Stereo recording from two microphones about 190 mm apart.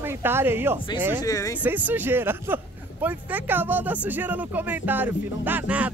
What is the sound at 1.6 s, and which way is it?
Speech, 10° right (ahead or behind).